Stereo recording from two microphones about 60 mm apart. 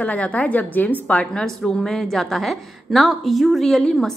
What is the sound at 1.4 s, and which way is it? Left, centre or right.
A woman's voice, centre.